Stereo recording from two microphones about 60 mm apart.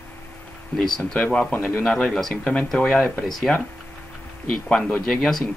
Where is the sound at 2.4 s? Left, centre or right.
Left.